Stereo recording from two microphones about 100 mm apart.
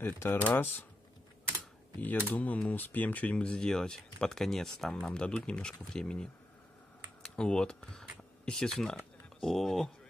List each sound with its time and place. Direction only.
0.0 s speech: 20° left (ahead or behind)
2.0 s speech: 15° left (ahead or behind)
7.2 s speech: 5° left (ahead or behind)